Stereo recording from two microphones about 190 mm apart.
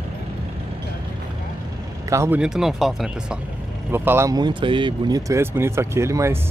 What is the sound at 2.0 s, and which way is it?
Speech, 15° right (ahead or behind).